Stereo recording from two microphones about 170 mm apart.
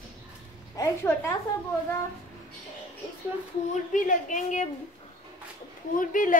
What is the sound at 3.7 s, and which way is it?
Speech, 50° left (ahead or behind).